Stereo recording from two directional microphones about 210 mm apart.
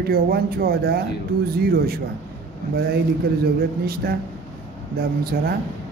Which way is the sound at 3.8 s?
45° right (ahead or behind).